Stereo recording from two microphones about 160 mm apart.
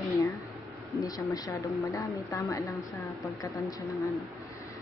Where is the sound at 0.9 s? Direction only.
20° left (ahead or behind).